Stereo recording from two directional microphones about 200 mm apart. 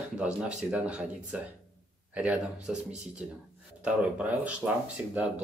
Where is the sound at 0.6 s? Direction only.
5° right (ahead or behind).